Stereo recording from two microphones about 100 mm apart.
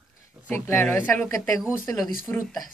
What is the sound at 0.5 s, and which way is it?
Speech, 25° left (ahead or behind).